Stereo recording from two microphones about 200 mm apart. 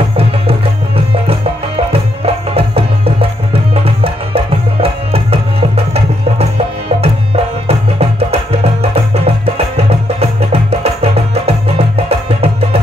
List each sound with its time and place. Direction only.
0.2 s music: 30° right (ahead or behind)
10.5 s music: 30° right (ahead or behind)